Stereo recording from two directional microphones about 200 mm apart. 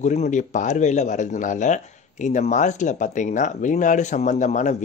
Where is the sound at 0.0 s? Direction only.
35° left (ahead or behind).